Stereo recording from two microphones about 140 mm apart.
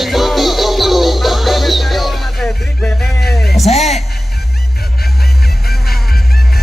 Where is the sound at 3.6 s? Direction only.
50° left (ahead or behind).